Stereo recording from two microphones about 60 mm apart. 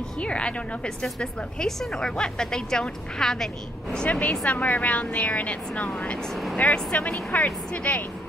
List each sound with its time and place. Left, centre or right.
0.2 s a woman's voice: centre
3.9 s a woman's voice: left